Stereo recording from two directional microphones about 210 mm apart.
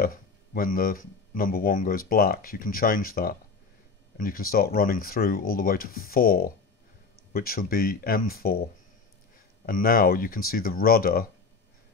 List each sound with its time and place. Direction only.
0.0 s speech: 45° left (ahead or behind)
9.7 s speech: 45° left (ahead or behind)